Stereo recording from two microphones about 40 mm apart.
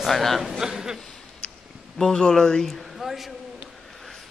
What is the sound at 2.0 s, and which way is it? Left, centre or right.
Speech, centre.